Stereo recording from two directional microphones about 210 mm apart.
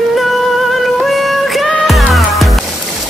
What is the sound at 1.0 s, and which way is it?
Music, centre (ahead or behind).